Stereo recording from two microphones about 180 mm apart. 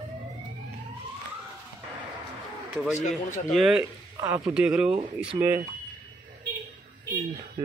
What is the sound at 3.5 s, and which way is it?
Speech, centre (ahead or behind).